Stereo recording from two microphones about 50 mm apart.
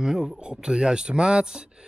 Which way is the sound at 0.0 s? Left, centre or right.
Centre.